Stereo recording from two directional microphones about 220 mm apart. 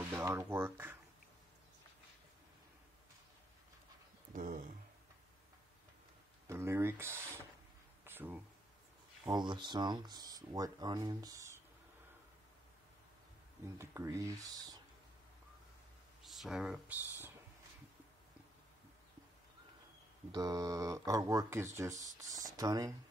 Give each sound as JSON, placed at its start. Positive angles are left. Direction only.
{"t": 0.1, "sound": "speech", "side_deg": -10}
{"t": 4.3, "sound": "speech", "side_deg": -35}
{"t": 6.4, "sound": "speech", "side_deg": -10}
{"t": 8.0, "sound": "a sound", "side_deg": -10}
{"t": 9.2, "sound": "speech", "side_deg": -20}
{"t": 13.7, "sound": "speech", "side_deg": -15}
{"t": 16.2, "sound": "speech", "side_deg": 0}
{"t": 20.2, "sound": "speech", "side_deg": -15}